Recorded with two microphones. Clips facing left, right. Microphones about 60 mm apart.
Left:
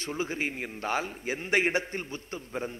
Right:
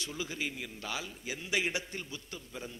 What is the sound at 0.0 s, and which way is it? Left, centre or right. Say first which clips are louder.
A man's voice: left 6 dB; left.